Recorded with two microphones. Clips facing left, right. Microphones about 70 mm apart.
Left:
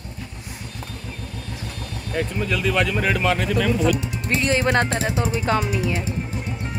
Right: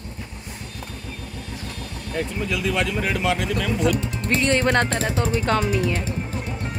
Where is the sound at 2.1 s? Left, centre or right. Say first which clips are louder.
Left 2 dB; left.